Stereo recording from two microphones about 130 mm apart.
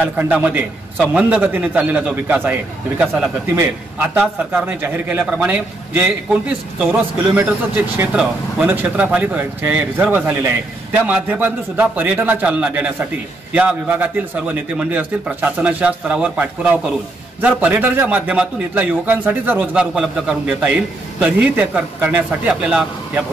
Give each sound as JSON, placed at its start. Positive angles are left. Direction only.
{"t": 0.0, "sound": "speech", "side_deg": -15}